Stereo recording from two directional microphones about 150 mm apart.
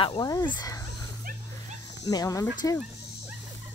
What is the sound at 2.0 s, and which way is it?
Speech, 25° left (ahead or behind).